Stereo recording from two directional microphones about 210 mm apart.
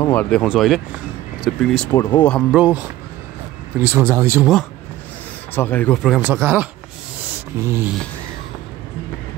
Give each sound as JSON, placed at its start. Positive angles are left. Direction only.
{"t": 0.0, "sound": "speech", "side_deg": 10}
{"t": 2.0, "sound": "speech", "side_deg": 20}
{"t": 2.5, "sound": "speech", "side_deg": -5}
{"t": 5.5, "sound": "speech", "side_deg": 10}